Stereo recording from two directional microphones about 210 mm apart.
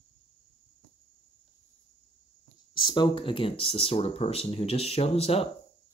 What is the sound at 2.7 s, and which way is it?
Speech, 20° left (ahead or behind).